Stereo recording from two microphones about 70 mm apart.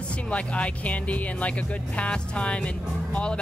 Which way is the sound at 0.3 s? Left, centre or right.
Centre.